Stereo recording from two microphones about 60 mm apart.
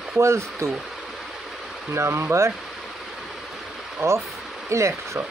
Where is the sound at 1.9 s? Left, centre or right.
Right.